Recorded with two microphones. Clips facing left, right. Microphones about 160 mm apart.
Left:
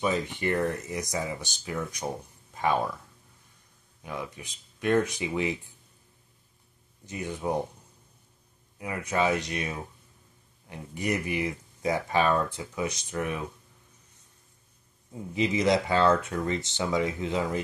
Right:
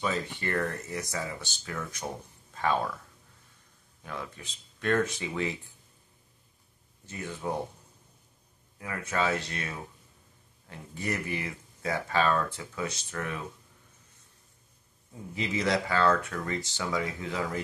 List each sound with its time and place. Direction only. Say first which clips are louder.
0.0 s speech: left 4 dB; 15° left (ahead or behind)
4.0 s speech: left 3 dB; 15° left (ahead or behind)
7.1 s speech: left 4 dB; 15° left (ahead or behind)
8.7 s speech: left 3 dB; 15° left (ahead or behind)
15.3 s speech: left 5 dB; 15° left (ahead or behind)